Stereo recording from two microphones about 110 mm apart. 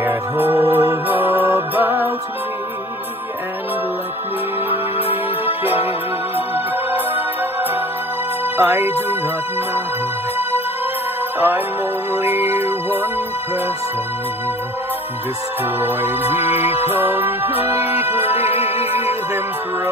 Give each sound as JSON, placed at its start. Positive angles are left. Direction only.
{"t": 0.0, "sound": "music", "side_deg": -20}
{"t": 4.9, "sound": "music", "side_deg": 60}
{"t": 6.3, "sound": "music", "side_deg": -15}
{"t": 8.5, "sound": "music", "side_deg": -20}
{"t": 11.3, "sound": "music", "side_deg": -15}
{"t": 16.2, "sound": "music", "side_deg": 65}
{"t": 17.0, "sound": "music", "side_deg": -20}
{"t": 18.0, "sound": "music", "side_deg": 65}